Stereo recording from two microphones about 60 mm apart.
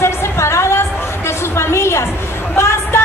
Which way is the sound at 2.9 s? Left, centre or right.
Left.